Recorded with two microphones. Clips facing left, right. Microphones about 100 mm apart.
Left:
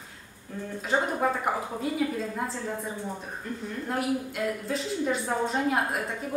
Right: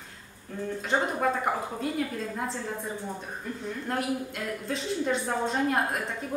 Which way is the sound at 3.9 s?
Centre (ahead or behind).